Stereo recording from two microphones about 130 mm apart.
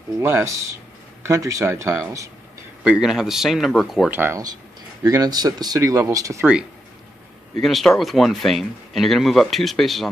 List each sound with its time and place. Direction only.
0.2 s speech: 15° right (ahead or behind)
2.8 s speech: 5° right (ahead or behind)
4.1 s speech: 15° right (ahead or behind)
5.0 s speech: 30° right (ahead or behind)
7.6 s speech: centre (ahead or behind)